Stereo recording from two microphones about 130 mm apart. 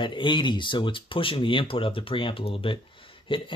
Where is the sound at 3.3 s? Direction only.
40° left (ahead or behind).